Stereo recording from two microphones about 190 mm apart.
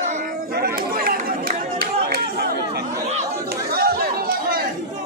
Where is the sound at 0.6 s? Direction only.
50° right (ahead or behind).